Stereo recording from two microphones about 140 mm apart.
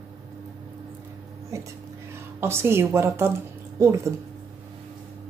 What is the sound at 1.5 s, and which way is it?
A woman's voice, 20° right (ahead or behind).